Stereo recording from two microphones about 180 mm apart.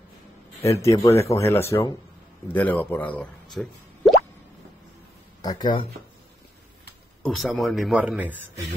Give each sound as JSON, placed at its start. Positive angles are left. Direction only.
{"t": 0.7, "sound": "speech", "side_deg": 15}
{"t": 4.0, "sound": "plop", "side_deg": 0}
{"t": 5.4, "sound": "speech", "side_deg": 20}
{"t": 7.2, "sound": "speech", "side_deg": 0}